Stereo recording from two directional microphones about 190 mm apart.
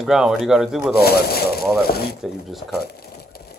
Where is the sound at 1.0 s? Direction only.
55° left (ahead or behind).